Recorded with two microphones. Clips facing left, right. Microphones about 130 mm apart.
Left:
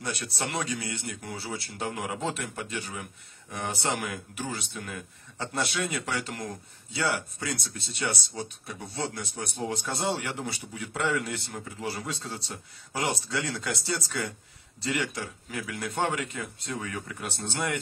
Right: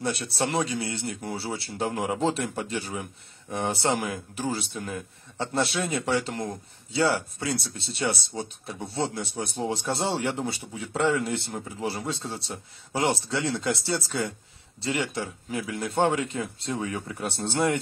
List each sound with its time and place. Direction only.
0.0 s speech: 30° right (ahead or behind)